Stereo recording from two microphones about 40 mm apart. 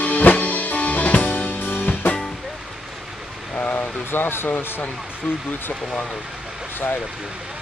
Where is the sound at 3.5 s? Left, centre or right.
Left.